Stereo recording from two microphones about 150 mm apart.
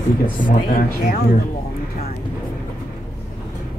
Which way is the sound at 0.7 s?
75° left (ahead or behind).